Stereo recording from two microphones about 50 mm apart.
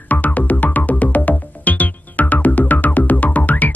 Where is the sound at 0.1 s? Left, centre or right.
Left.